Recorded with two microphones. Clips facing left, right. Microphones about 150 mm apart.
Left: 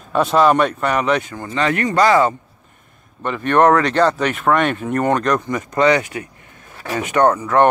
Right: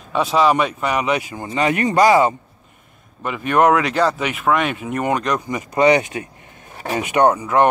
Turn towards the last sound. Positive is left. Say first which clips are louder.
# left 1 dB
turn(degrees=-15)  # may be behind; listen again after turning